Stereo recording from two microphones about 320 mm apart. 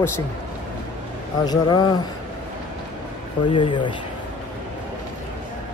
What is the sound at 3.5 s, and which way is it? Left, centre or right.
Speech, centre.